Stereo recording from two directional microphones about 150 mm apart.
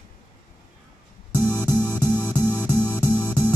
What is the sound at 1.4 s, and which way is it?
Music, 10° left (ahead or behind).